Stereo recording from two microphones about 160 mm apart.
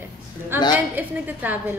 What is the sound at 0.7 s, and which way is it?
Speech, 10° right (ahead or behind).